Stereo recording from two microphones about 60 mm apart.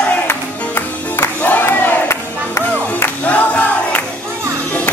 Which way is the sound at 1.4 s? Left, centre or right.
Left.